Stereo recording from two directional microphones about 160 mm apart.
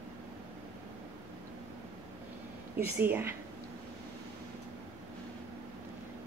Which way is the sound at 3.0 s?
15° right (ahead or behind).